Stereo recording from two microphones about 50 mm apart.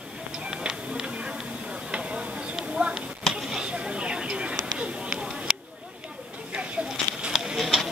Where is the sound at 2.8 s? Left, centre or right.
Right.